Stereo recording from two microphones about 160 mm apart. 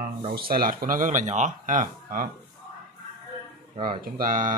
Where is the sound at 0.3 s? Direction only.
70° right (ahead or behind).